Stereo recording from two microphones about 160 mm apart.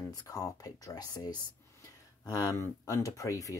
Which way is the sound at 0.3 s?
20° left (ahead or behind).